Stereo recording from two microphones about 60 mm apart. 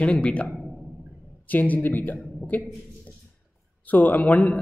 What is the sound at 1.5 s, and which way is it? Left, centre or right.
Speech, left.